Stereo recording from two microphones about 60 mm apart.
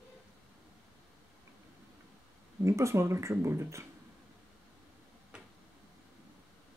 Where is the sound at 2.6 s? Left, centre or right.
Right.